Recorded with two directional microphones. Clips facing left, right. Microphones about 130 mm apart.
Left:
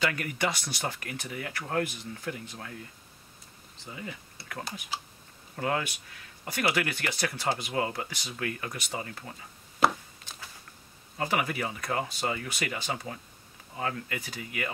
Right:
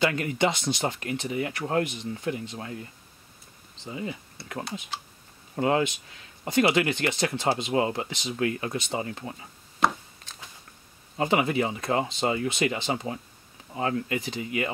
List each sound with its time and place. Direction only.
0.0 s speech: 25° right (ahead or behind)
3.8 s speech: 20° right (ahead or behind)
5.6 s speech: 20° right (ahead or behind)
11.1 s speech: 25° right (ahead or behind)